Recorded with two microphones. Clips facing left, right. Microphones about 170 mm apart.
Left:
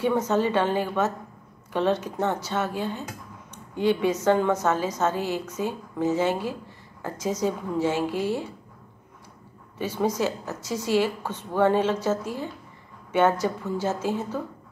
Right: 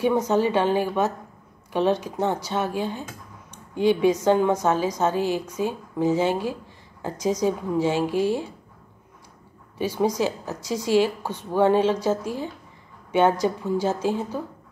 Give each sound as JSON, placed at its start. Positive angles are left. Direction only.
{"t": 0.0, "sound": "a woman's voice", "side_deg": -15}
{"t": 9.8, "sound": "a woman's voice", "side_deg": -15}